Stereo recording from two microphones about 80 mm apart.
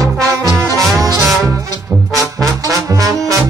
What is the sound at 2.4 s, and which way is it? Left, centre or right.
Trombone, right.